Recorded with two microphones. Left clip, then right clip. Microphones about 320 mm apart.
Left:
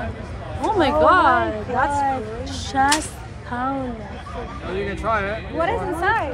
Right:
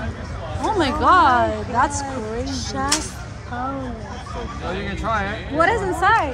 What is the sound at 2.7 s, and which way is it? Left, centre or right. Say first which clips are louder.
Speech: left 5 dB; left.